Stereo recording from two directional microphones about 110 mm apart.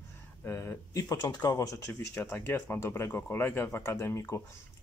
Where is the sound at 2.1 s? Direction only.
20° left (ahead or behind).